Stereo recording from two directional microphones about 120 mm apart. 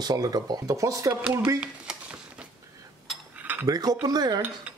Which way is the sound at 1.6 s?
10° right (ahead or behind).